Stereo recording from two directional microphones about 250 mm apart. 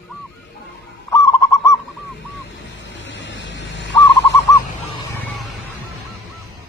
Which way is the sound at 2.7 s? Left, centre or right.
Left.